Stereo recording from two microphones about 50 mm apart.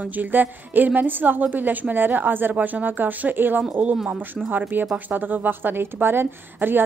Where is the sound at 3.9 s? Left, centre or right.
Centre.